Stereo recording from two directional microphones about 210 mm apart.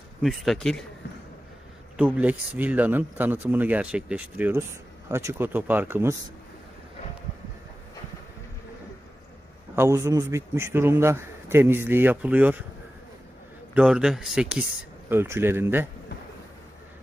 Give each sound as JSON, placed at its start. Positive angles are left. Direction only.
{"t": 0.2, "sound": "speech", "side_deg": 0}
{"t": 2.0, "sound": "speech", "side_deg": -5}
{"t": 9.8, "sound": "speech", "side_deg": -15}
{"t": 13.7, "sound": "speech", "side_deg": -5}